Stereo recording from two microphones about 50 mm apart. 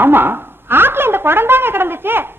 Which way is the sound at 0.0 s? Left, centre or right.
Right.